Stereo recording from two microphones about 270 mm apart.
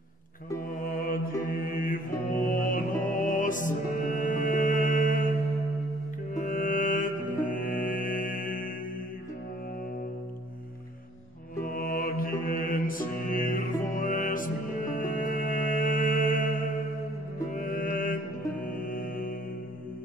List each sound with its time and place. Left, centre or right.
0.7 s music: left
1.4 s mantra: left
6.3 s music: left
11.6 s mantra: left
17.5 s music: left